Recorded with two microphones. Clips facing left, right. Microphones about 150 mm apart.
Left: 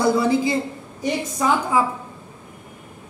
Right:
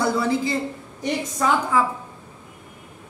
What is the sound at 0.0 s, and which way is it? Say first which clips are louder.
A woman's voice: left 3 dB; 15° left (ahead or behind).